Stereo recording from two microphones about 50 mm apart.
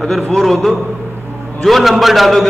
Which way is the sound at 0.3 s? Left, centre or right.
Centre.